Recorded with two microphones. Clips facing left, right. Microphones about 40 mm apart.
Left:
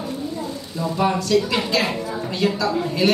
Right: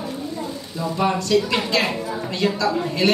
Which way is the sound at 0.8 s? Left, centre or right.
Centre.